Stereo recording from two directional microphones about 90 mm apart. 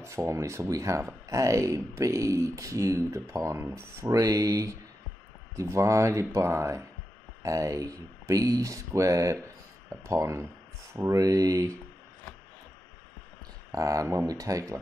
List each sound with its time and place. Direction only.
0.0 s speech: 35° right (ahead or behind)
13.7 s speech: 40° right (ahead or behind)